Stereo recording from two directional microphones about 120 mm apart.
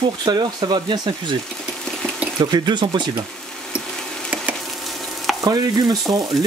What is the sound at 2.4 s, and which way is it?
Speech, 35° right (ahead or behind).